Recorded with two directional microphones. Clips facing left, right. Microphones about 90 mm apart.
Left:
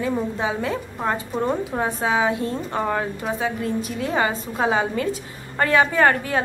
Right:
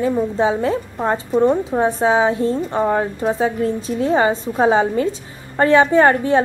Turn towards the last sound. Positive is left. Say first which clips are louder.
# right 6 dB
turn(degrees=-30)  # may be behind; listen again after turning